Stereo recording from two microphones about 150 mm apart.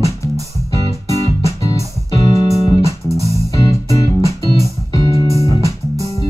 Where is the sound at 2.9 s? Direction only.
20° right (ahead or behind).